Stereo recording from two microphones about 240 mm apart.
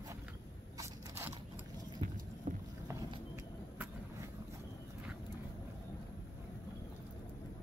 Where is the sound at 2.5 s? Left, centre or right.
Right.